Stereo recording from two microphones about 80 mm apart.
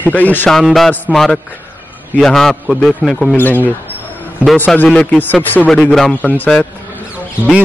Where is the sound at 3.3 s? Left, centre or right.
Left.